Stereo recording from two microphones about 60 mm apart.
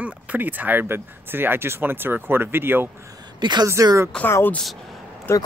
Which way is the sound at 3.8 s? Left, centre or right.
Right.